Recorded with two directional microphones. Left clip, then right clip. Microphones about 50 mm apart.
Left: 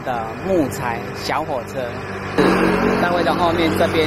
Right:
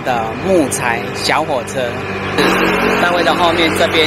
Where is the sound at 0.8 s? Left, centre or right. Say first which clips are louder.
Right 7 dB; right.